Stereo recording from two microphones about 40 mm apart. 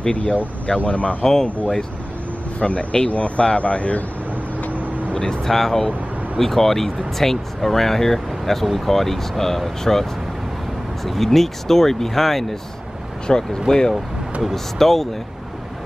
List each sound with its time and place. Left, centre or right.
0.8 s speech: left
1.2 s speech: centre
2.6 s speech: left
4.7 s vehicle: right
5.1 s speech: left
5.4 s speech: centre
11.1 s speech: centre